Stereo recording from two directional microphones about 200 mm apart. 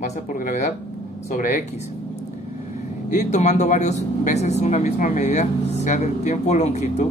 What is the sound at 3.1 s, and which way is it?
Speech, 35° left (ahead or behind).